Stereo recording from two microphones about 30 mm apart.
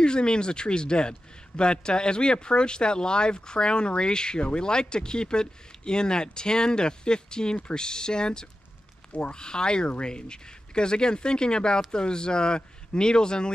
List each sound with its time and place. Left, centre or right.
0.0 s speech: left